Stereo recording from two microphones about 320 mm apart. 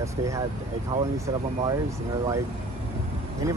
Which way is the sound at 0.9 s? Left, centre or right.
Right.